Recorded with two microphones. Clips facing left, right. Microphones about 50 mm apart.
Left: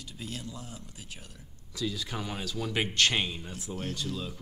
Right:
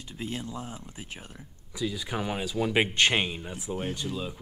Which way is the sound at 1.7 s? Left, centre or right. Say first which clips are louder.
Right 3 dB; centre.